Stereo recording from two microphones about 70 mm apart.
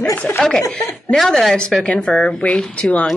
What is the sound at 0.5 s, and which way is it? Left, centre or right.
A woman's voice, centre.